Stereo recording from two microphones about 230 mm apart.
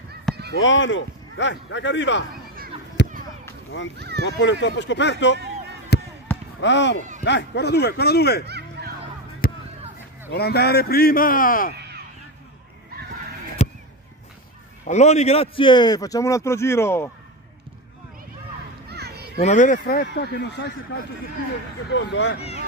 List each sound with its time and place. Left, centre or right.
0.6 s speech: left
3.0 s a sound: left
4.0 s speech: right
4.4 s speech: left
5.9 s basketball bounce: left
6.3 s basketball bounce: centre
6.6 s speech: left
8.5 s music: right
9.4 s a sound: left
10.3 s speech: left
13.6 s a sound: left
14.9 s speech: left; by 17.1 s centre
18.9 s children playing: right
19.3 s speech: left